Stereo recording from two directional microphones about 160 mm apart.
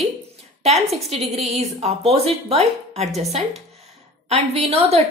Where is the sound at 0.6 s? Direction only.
45° right (ahead or behind).